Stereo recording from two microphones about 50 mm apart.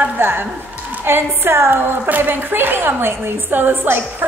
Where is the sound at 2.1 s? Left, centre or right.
Right.